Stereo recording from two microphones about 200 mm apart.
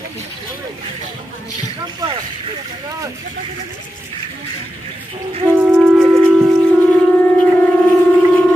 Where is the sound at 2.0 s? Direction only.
20° right (ahead or behind).